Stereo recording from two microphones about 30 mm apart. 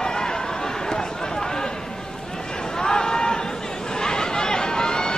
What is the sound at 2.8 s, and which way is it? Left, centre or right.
Run, left.